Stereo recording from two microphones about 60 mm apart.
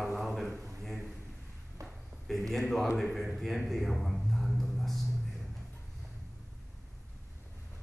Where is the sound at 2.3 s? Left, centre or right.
Centre.